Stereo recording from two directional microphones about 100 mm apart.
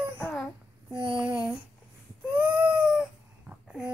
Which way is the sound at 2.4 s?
15° right (ahead or behind).